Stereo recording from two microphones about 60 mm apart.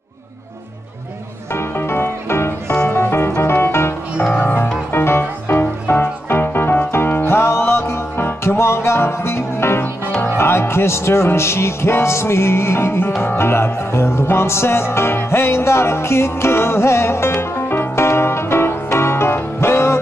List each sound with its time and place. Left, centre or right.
1.5 s music: left